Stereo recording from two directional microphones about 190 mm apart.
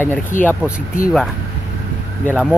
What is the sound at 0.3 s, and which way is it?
Speech, 45° left (ahead or behind).